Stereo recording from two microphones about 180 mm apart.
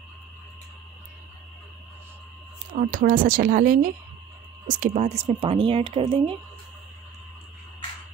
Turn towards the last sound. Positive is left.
turn(degrees=-30)  # may be behind; listen again after turning